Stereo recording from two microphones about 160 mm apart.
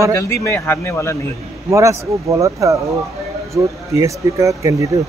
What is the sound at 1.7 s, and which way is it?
Speech, 20° right (ahead or behind).